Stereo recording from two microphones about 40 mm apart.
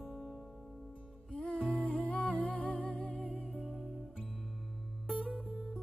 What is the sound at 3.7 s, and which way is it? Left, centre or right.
Music, centre.